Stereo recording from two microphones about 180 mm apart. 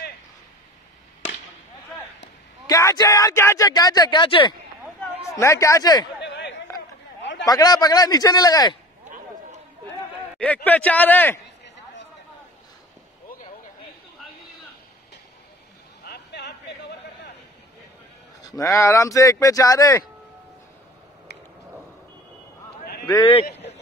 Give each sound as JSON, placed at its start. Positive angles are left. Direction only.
{"t": 2.6, "sound": "speech", "side_deg": 20}
{"t": 5.3, "sound": "speech", "side_deg": 15}
{"t": 6.2, "sound": "chatter", "side_deg": 75}
{"t": 7.4, "sound": "speech", "side_deg": 20}
{"t": 10.4, "sound": "speech", "side_deg": 10}
{"t": 16.0, "sound": "a sound", "side_deg": 70}
{"t": 18.4, "sound": "speech", "side_deg": 20}